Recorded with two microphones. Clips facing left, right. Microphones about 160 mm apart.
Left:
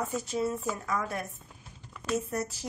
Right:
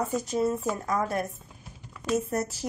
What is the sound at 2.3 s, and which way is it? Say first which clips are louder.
Speech: right 4 dB; 45° right (ahead or behind).